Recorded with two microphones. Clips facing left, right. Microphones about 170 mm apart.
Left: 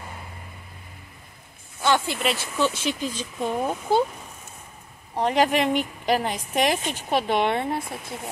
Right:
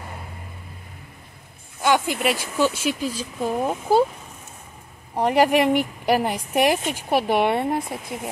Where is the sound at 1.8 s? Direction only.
10° right (ahead or behind).